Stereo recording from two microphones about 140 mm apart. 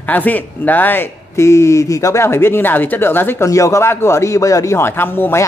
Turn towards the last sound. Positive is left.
turn(degrees=15)  # may be behind; listen again after turning